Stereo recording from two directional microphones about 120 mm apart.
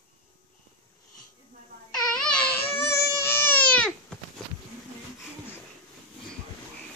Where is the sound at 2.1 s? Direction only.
5° left (ahead or behind).